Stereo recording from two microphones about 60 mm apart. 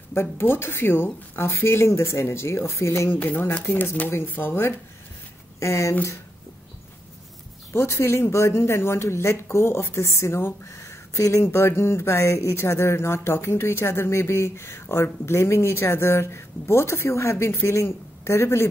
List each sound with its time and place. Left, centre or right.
0.1 s speech: left
3.1 s speech: left
4.1 s speech: left
5.6 s speech: left
7.7 s speech: left
10.8 s a sound: left
11.4 s speech: left